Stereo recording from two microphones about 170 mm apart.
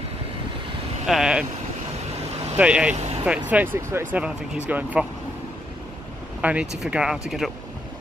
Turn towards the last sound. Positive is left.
turn(degrees=0)  # may be behind; listen again after turning